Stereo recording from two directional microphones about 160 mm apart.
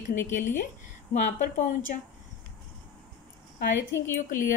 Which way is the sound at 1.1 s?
50° left (ahead or behind).